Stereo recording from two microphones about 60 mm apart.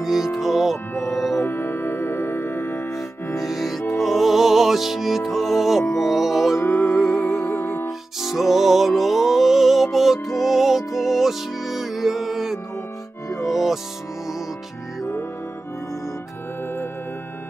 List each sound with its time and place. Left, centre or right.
0.0 s music: centre
1.4 s music: left
3.3 s music: centre
6.6 s music: left
7.0 s music: centre
7.2 s music: left
8.2 s music: centre